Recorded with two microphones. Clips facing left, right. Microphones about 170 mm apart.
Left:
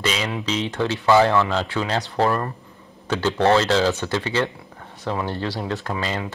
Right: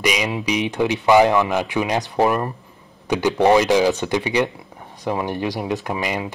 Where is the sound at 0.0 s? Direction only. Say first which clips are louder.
Right 3 dB; 15° right (ahead or behind).